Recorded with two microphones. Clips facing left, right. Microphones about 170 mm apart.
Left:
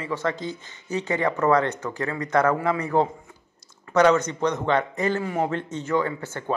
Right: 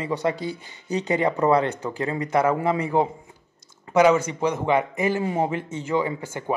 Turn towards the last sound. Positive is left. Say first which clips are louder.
# even
turn(degrees=-15)  # may be behind; listen again after turning